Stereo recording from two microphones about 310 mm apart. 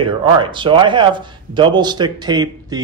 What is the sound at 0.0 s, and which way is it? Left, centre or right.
Speech, centre.